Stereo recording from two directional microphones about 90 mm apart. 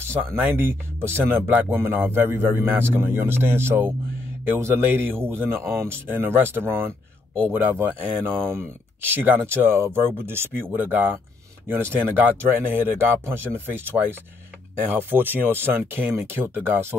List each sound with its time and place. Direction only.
0.4 s speech: 20° right (ahead or behind)